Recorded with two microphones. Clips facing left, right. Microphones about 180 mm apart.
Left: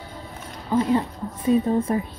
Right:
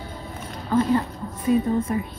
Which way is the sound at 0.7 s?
15° left (ahead or behind).